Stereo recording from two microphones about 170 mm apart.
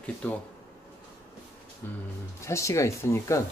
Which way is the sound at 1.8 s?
10° left (ahead or behind).